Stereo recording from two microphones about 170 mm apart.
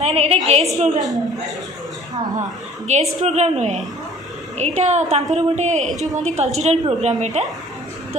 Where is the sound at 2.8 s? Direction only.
40° right (ahead or behind).